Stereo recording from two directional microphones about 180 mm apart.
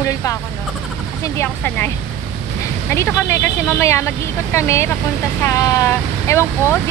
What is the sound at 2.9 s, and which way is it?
Speech, 15° left (ahead or behind).